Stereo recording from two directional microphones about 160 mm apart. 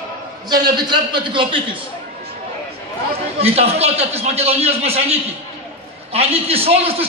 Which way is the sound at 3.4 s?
40° right (ahead or behind).